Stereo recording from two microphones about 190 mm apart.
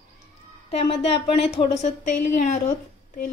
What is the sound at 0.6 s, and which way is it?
A woman's voice, 30° left (ahead or behind).